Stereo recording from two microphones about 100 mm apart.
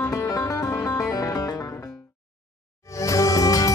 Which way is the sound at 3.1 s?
30° left (ahead or behind).